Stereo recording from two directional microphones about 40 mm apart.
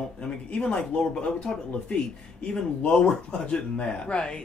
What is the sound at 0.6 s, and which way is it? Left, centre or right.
Speech, left.